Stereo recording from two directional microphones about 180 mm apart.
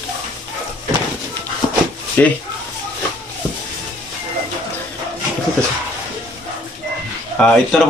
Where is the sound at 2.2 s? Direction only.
10° left (ahead or behind).